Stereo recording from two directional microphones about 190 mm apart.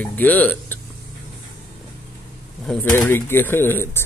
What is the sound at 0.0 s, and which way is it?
Speech, 10° left (ahead or behind).